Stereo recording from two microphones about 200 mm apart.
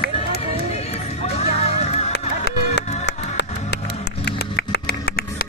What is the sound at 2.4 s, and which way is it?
Music, 55° left (ahead or behind).